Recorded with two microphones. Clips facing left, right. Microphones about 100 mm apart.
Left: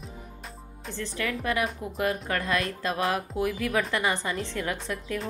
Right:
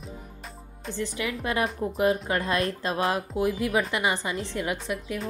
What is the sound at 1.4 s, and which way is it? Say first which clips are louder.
A woman's voice: right 3 dB; 25° right (ahead or behind).